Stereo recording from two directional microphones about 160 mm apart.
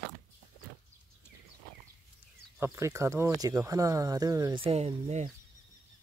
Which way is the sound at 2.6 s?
20° right (ahead or behind).